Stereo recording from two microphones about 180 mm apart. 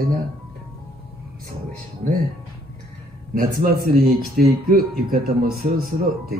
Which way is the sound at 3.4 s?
55° right (ahead or behind).